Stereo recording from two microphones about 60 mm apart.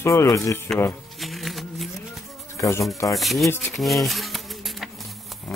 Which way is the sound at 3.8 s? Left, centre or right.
Centre.